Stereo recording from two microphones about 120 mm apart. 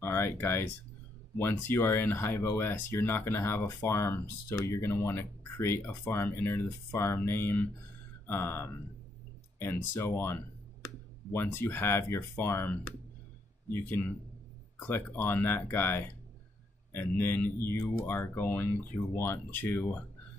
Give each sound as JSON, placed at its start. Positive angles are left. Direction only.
{"t": 0.0, "sound": "speech", "side_deg": 20}